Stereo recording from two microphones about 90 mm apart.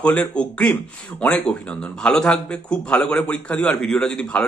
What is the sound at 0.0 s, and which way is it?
A man's voice, 15° left (ahead or behind).